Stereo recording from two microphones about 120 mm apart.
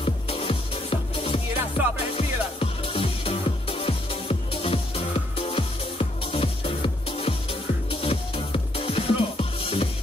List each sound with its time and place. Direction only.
0.0 s music: 50° left (ahead or behind)